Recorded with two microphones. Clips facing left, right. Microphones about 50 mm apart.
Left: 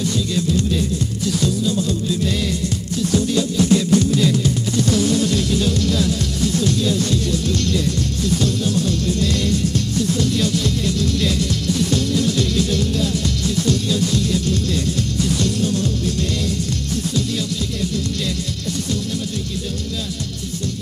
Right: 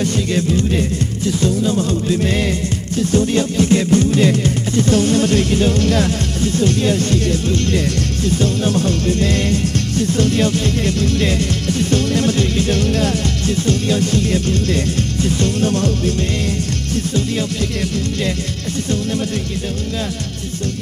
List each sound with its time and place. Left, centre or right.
0.0 s music: right